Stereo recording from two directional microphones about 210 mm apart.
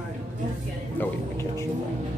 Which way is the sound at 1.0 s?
10° left (ahead or behind).